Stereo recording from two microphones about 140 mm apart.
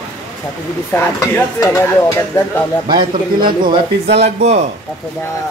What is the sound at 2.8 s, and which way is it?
Speech, 35° right (ahead or behind).